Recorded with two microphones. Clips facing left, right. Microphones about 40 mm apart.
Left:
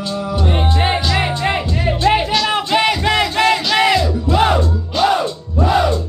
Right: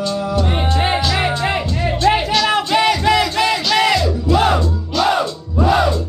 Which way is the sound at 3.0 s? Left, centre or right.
Left.